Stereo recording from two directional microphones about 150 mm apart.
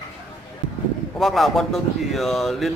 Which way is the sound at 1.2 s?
Centre (ahead or behind).